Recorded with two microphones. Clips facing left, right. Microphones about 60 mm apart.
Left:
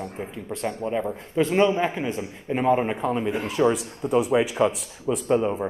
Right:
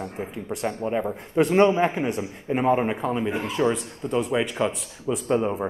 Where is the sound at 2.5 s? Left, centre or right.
Centre.